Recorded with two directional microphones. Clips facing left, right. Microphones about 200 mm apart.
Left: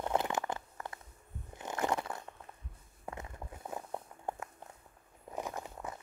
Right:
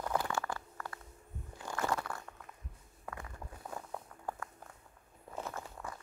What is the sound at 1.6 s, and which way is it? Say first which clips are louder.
Crunch: left 2 dB; 20° left (ahead or behind).